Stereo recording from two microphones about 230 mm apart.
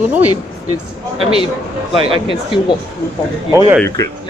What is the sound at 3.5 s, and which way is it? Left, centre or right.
Speech, centre.